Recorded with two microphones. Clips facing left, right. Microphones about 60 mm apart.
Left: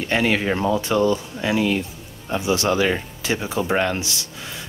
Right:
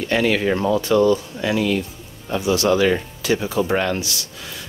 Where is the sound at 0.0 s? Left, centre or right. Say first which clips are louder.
Right 2 dB; left.